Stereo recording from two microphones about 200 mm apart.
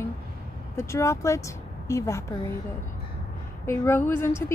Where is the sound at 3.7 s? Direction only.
10° left (ahead or behind).